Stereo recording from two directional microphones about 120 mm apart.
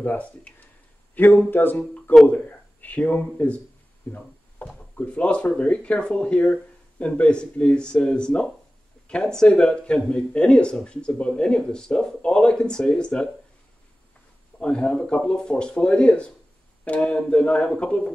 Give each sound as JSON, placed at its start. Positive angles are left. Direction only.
{"t": 0.0, "sound": "speech", "side_deg": 10}
{"t": 14.6, "sound": "speech", "side_deg": 10}